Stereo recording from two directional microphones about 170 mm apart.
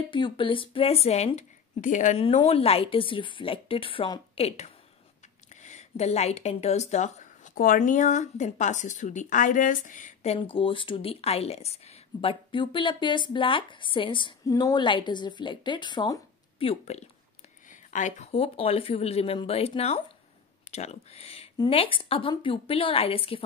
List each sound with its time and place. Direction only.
0.1 s speech: 30° left (ahead or behind); by 2.2 s 45° left (ahead or behind)
2.3 s speech: 35° left (ahead or behind)
17.6 s speech: 45° left (ahead or behind)